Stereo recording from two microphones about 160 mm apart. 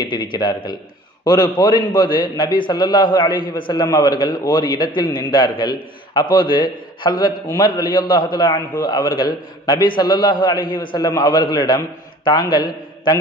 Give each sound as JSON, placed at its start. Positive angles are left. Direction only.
{"t": 0.0, "sound": "a man's voice", "side_deg": 30}
{"t": 7.2, "sound": "a man's voice", "side_deg": 60}
{"t": 7.5, "sound": "a man's voice", "side_deg": 30}